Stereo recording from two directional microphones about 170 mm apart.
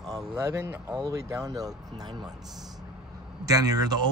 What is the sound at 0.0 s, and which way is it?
Speech, 20° right (ahead or behind).